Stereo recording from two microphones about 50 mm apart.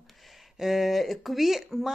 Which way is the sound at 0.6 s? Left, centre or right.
Centre.